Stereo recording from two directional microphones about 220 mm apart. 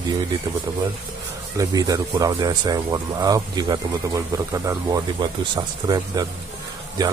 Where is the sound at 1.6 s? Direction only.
15° right (ahead or behind).